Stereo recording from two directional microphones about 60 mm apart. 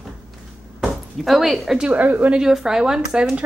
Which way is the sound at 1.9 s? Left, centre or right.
Right.